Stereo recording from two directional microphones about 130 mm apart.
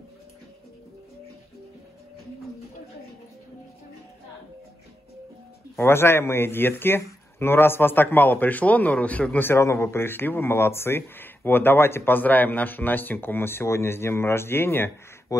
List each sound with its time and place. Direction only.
5.8 s speech: 20° left (ahead or behind)